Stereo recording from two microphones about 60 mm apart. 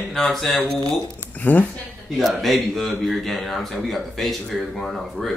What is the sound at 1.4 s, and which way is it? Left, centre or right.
Speech, left.